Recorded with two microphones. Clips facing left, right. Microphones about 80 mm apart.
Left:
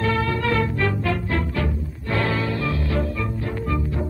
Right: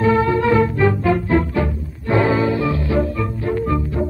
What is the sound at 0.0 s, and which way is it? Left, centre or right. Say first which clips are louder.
Music: right 7 dB; centre.